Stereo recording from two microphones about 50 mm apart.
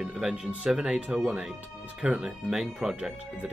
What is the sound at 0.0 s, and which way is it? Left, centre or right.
Speech, centre.